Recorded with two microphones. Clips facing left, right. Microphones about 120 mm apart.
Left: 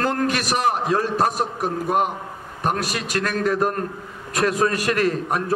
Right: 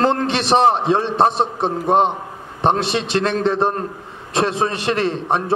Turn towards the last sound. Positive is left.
turn(degrees=-25)  # may be behind; listen again after turning